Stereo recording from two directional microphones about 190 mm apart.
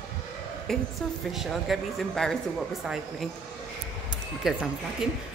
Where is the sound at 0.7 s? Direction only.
Centre (ahead or behind).